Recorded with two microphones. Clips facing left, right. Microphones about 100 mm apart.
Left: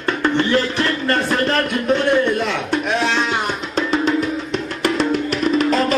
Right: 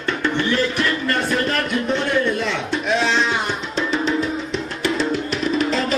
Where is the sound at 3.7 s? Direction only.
50° left (ahead or behind).